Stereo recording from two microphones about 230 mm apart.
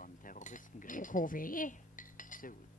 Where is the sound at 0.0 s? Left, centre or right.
Left.